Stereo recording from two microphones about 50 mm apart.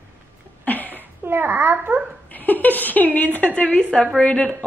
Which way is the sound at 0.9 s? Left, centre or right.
Right.